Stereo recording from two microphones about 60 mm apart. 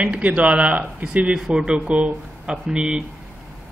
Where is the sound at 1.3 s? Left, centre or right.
Centre.